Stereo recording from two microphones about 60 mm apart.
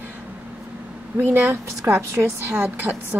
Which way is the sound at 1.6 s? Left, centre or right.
Right.